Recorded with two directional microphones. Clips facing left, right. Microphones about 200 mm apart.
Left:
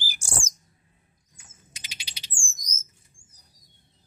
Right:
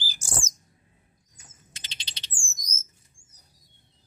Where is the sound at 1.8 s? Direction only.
10° left (ahead or behind).